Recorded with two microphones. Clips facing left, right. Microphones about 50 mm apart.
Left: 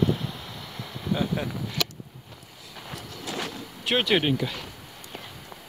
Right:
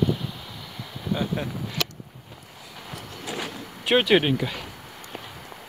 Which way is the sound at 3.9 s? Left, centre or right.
Centre.